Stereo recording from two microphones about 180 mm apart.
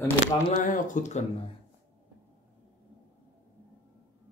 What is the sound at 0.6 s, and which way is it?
Speech, 45° left (ahead or behind).